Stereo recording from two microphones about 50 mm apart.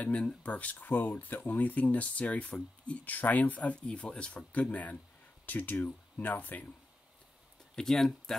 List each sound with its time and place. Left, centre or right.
0.0 s speech: left
7.7 s speech: centre